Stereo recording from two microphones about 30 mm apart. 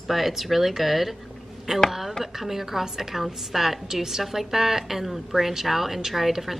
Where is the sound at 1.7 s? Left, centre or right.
Centre.